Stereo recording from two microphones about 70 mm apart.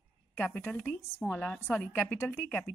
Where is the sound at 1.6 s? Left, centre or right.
Left.